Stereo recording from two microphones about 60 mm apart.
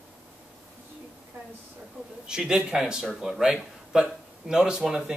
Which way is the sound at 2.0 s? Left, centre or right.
Centre.